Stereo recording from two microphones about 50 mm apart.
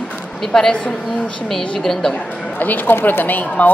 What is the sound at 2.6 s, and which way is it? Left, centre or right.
Speech, left.